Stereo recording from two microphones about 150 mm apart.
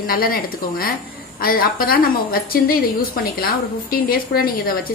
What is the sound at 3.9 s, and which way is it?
Speech, 85° left.